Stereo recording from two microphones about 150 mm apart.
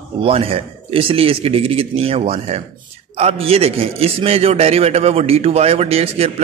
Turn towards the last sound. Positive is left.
turn(degrees=-40)  # may be behind; listen again after turning